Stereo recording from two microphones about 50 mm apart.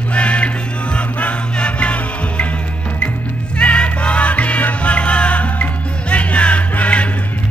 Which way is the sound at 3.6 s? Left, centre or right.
Left.